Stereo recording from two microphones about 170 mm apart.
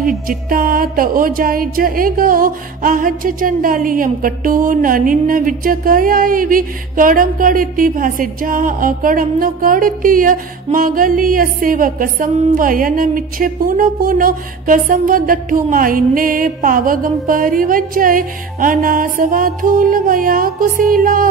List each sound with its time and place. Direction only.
0.0 s music: 55° right (ahead or behind)